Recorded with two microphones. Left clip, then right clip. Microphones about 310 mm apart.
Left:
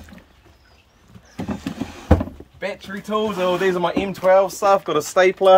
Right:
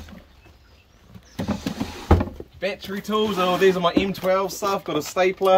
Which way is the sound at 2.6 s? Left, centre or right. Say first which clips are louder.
Right 1 dB; centre.